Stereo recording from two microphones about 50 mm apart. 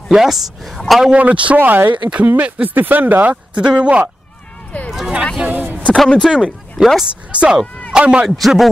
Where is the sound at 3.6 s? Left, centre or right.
Centre.